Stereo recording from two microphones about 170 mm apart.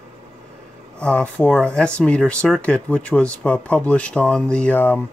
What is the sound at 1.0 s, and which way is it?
Speech, 5° left (ahead or behind).